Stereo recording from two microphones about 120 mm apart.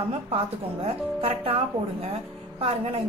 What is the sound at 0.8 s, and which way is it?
A woman's voice, 50° right (ahead or behind).